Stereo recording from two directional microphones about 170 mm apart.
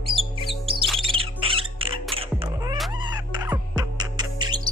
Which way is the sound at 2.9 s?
25° right (ahead or behind).